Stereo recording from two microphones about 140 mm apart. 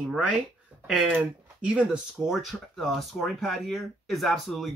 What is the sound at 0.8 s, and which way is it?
Speech, 5° right (ahead or behind).